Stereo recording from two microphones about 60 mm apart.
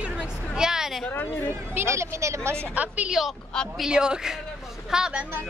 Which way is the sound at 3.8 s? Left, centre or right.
Centre.